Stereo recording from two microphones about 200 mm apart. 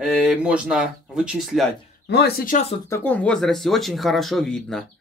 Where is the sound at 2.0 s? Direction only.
55° left (ahead or behind); by 2.8 s 35° left (ahead or behind).